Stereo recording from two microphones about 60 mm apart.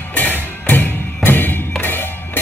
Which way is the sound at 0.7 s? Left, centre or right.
Left.